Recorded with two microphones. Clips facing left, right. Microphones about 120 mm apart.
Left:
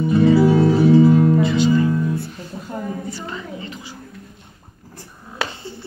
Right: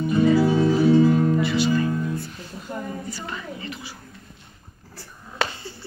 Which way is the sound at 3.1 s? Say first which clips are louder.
Left 3 dB; 25° left (ahead or behind).